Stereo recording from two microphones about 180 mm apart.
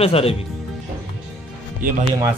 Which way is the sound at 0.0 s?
35° left (ahead or behind).